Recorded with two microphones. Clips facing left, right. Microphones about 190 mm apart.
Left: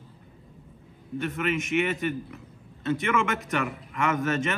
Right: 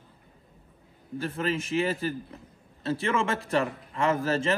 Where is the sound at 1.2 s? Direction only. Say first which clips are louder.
Left 1 dB; 35° right (ahead or behind).